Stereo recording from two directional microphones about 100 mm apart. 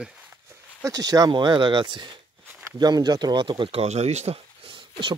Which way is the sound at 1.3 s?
50° right (ahead or behind).